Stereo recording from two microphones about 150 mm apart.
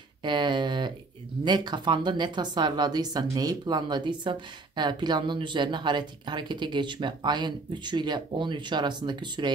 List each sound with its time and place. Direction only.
0.2 s speech: 30° right (ahead or behind)